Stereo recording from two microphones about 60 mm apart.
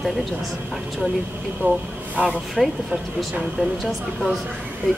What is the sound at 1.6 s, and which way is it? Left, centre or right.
Speech, right.